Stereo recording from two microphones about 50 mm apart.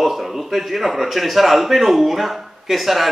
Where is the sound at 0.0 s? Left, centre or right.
Centre.